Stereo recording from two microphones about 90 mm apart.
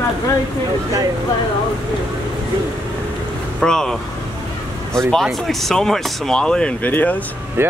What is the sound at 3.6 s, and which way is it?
Speech, 5° left (ahead or behind).